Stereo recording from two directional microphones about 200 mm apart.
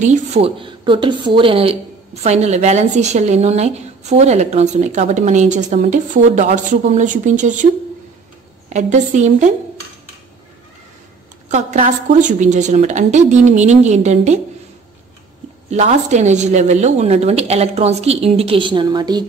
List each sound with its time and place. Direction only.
0.0 s a woman's voice: 35° right (ahead or behind)
8.6 s a woman's voice: 35° right (ahead or behind)
11.5 s a woman's voice: 35° right (ahead or behind)
15.7 s a woman's voice: 35° right (ahead or behind)